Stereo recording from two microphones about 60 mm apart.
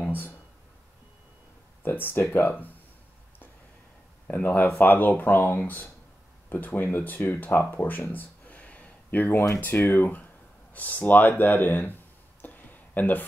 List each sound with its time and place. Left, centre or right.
1.8 s speech: left
4.3 s speech: left
10.7 s a sound: left